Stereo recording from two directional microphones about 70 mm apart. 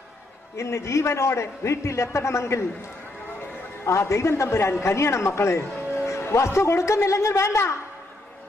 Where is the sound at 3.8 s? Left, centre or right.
Left.